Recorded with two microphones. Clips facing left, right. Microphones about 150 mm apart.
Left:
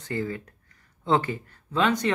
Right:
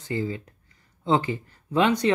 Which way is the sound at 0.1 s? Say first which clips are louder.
Right 1 dB; 15° right (ahead or behind).